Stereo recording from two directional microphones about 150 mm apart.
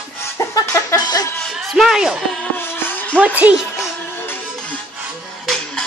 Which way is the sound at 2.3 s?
15° left (ahead or behind).